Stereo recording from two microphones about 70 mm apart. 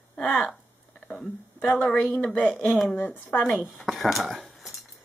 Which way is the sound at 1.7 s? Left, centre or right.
Centre.